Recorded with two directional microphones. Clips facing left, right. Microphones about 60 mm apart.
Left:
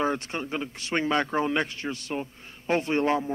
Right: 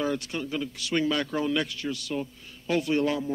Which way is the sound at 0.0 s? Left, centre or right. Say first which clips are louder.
Left 1 dB; left.